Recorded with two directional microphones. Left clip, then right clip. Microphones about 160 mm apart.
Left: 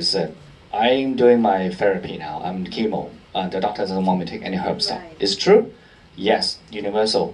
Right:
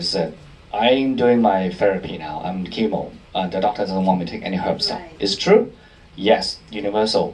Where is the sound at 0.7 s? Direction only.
35° left (ahead or behind).